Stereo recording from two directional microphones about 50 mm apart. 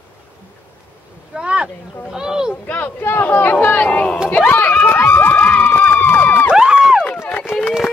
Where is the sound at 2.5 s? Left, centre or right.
Left.